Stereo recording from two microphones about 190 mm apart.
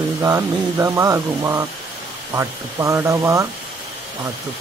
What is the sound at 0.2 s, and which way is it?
Speech, 15° right (ahead or behind).